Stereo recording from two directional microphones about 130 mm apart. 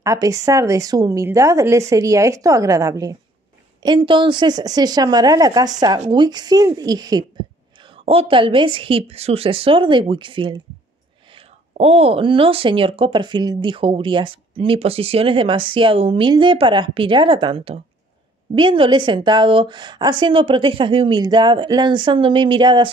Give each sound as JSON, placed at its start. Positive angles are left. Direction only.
{"t": 0.0, "sound": "speech", "side_deg": -25}
{"t": 3.8, "sound": "a woman's voice", "side_deg": -40}
{"t": 7.8, "sound": "speech", "side_deg": -45}
{"t": 11.7, "sound": "a woman's voice", "side_deg": -55}